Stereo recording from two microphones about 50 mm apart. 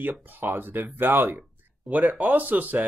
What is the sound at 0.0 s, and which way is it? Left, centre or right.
Speech, right.